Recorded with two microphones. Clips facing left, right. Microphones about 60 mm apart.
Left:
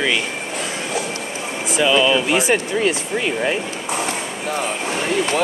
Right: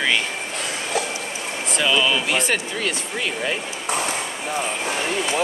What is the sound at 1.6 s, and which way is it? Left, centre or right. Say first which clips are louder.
Speech: left 4 dB; centre.